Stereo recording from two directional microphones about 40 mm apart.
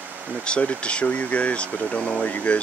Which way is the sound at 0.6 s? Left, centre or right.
Left.